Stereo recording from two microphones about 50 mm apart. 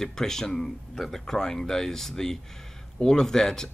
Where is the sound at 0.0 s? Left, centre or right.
Centre.